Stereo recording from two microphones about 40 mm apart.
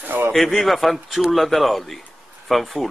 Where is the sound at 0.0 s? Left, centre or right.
Right.